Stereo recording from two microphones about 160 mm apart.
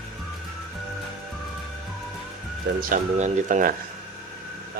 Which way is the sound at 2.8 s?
55° right (ahead or behind).